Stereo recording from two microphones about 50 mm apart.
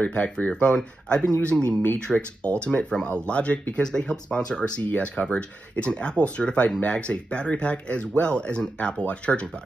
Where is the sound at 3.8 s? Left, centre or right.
Centre.